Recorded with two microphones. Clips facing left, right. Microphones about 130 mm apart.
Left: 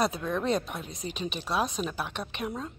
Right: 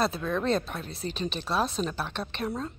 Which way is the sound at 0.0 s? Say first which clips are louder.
Right 1 dB; 15° left (ahead or behind).